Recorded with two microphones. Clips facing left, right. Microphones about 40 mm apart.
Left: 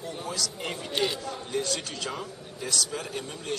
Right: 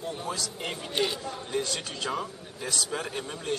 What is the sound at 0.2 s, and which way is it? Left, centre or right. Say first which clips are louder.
Speech: even; right.